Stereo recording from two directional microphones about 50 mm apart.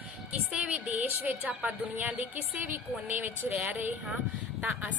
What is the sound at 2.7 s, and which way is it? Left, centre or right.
A woman's voice, right.